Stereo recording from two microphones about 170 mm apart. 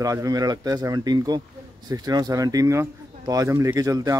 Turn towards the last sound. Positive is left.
turn(degrees=-20)  # may be behind; listen again after turning